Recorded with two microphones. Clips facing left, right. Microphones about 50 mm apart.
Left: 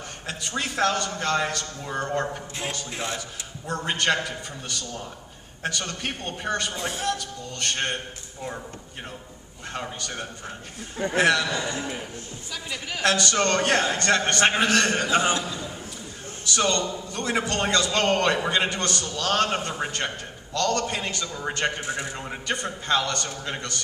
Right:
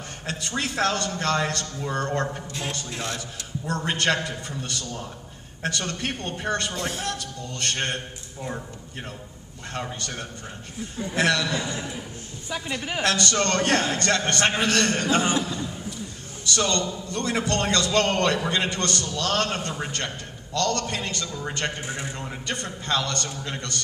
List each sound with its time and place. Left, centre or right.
0.3 s a man's voice: centre
2.9 s a man's voice: centre
3.2 s a man's voice: centre
9.7 s a man's voice: centre
12.4 s a woman's voice: right
13.0 s a man's voice: centre
16.5 s a man's voice: centre